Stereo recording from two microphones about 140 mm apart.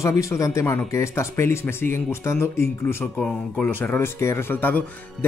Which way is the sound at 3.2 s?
10° left (ahead or behind).